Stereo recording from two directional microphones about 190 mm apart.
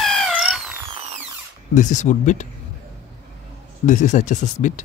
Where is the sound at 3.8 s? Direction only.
40° left (ahead or behind).